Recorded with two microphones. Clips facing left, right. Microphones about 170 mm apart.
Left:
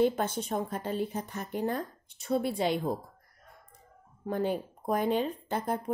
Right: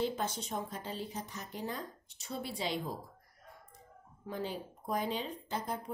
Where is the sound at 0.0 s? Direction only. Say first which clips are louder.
Left 8 dB; 55° left (ahead or behind).